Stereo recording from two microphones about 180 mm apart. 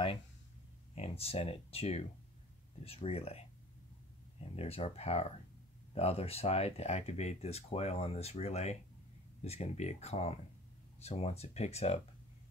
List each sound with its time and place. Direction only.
0.9 s speech: 35° left (ahead or behind)